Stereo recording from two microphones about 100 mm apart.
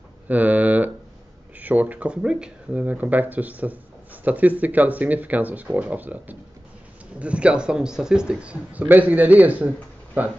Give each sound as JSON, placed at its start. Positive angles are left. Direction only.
{"t": 0.3, "sound": "speech", "side_deg": -15}